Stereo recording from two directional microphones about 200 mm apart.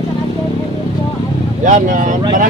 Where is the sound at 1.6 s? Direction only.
40° right (ahead or behind).